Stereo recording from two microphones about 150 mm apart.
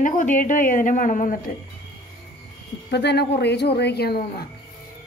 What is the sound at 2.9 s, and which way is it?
Speech, 90° left.